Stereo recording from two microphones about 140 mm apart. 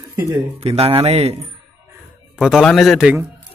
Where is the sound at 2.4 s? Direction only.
Centre (ahead or behind).